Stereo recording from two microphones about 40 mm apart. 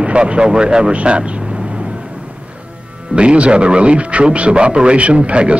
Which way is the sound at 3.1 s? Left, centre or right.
Right.